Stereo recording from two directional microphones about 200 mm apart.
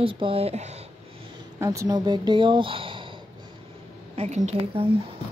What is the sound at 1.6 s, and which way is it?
Speech, 15° right (ahead or behind).